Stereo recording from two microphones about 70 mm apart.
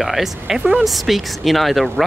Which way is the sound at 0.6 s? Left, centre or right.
Right.